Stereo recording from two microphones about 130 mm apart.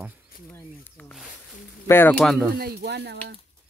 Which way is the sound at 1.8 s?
15° left (ahead or behind).